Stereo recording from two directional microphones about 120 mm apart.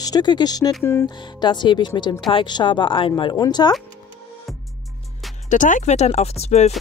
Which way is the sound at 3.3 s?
35° left (ahead or behind).